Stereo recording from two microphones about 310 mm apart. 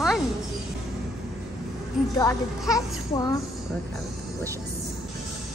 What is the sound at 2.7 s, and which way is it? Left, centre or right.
Speech, centre.